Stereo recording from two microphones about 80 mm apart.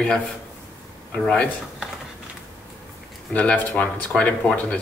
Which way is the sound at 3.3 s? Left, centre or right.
Centre.